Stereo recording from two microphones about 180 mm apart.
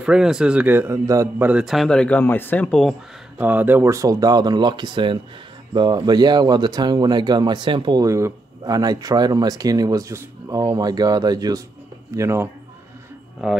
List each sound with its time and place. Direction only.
0.0 s a man's voice: 5° right (ahead or behind)
1.5 s speech: 5° right (ahead or behind)
3.3 s a man's voice: 10° right (ahead or behind)